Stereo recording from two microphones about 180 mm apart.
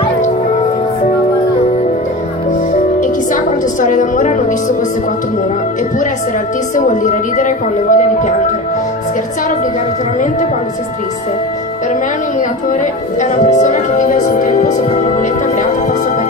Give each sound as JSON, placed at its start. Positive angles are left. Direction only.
{"t": 3.0, "sound": "music", "side_deg": 45}
{"t": 6.7, "sound": "speech", "side_deg": 45}
{"t": 13.2, "sound": "speech", "side_deg": 45}